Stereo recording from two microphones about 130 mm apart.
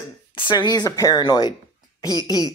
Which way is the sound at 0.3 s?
40° left (ahead or behind).